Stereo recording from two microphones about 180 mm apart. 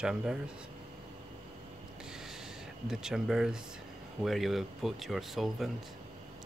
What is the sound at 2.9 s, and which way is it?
Speech, 5° right (ahead or behind).